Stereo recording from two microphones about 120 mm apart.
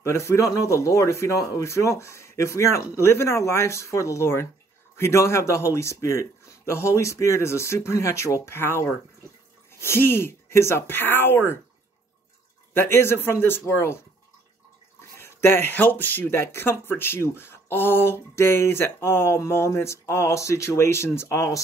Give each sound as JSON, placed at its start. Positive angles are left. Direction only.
{"t": 0.0, "sound": "speech", "side_deg": 20}
{"t": 12.7, "sound": "speech", "side_deg": 20}
{"t": 15.0, "sound": "speech", "side_deg": 20}